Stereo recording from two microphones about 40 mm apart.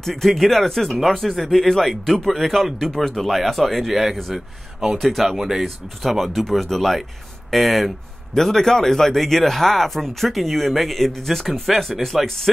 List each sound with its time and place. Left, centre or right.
0.0 s speech: centre
6.1 s speech: centre